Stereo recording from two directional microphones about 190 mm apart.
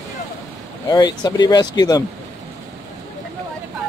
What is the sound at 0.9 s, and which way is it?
Speech, 20° left (ahead or behind).